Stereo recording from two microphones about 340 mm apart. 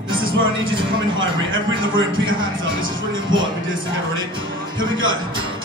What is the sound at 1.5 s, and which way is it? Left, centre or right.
A man's voice, right.